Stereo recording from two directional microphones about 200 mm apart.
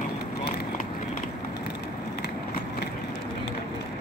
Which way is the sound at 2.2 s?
55° left (ahead or behind).